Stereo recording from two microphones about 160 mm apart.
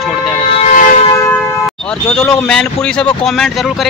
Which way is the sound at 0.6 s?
50° left (ahead or behind).